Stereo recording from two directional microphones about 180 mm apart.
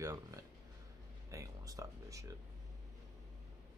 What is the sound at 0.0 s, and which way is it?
Speech, 20° right (ahead or behind).